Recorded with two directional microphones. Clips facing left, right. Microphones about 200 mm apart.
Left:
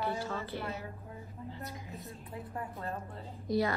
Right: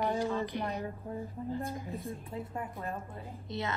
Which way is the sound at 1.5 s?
50° right (ahead or behind).